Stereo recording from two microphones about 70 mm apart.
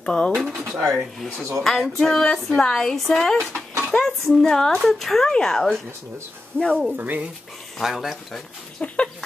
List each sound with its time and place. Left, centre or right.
0.0 s speech: centre
0.3 s speech: centre
6.5 s speech: right
7.8 s speech: centre
8.8 s speech: centre